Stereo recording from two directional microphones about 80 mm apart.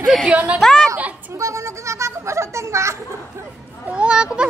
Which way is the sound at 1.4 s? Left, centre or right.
Right.